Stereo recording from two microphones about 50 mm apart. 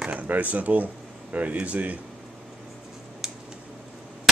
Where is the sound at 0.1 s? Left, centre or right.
Right.